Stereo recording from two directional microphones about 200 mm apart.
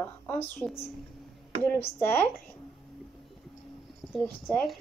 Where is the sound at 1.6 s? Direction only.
10° left (ahead or behind).